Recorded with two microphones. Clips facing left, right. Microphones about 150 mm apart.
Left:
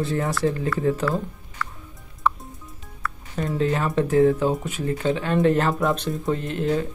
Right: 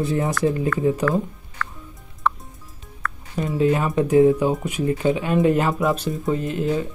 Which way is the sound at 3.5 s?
15° right (ahead or behind).